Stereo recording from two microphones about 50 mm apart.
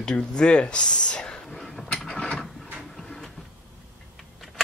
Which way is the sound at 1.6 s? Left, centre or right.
Centre.